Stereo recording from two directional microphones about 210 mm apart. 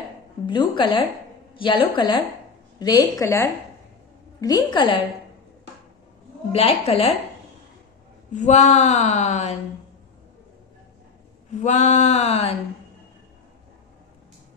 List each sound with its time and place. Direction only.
0.5 s a woman's voice: 20° left (ahead or behind)
6.5 s a woman's voice: 30° left (ahead or behind)
8.5 s speech: 35° left (ahead or behind)
11.6 s speech: 35° left (ahead or behind)